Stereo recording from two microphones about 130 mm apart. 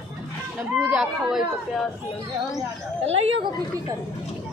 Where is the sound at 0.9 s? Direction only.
5° right (ahead or behind).